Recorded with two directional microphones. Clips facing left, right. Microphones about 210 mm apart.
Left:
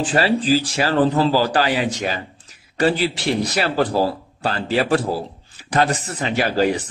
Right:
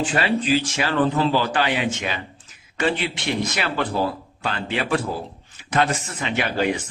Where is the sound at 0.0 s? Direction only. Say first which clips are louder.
Left 3 dB; 35° left (ahead or behind).